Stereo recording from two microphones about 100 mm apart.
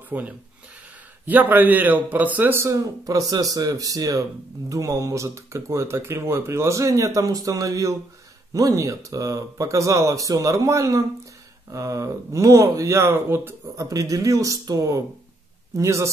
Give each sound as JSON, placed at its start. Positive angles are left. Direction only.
{"t": 0.1, "sound": "a man's voice", "side_deg": -15}
{"t": 13.7, "sound": "a man's voice", "side_deg": -35}